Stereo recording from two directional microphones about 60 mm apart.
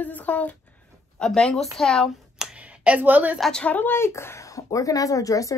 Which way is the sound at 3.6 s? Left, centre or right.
Left.